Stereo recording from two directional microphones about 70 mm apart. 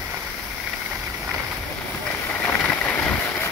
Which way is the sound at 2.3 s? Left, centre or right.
Left.